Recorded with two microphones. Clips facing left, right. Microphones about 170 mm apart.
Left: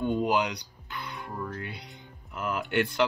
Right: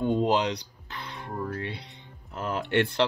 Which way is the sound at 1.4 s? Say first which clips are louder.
Right 6 dB; 30° right (ahead or behind).